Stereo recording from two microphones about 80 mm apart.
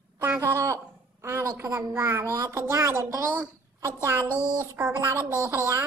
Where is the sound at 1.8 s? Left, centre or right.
Right.